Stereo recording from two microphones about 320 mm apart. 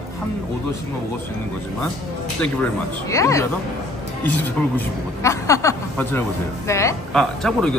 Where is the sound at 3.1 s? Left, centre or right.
Centre.